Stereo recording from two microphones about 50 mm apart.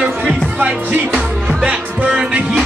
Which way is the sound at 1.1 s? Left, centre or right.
Centre.